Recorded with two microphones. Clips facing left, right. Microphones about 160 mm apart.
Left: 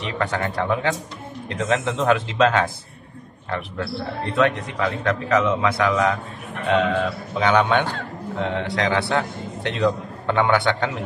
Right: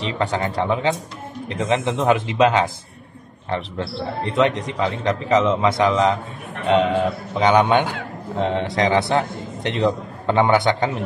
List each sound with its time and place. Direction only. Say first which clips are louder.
0.2 s a man's voice: right 2 dB; 20° right (ahead or behind)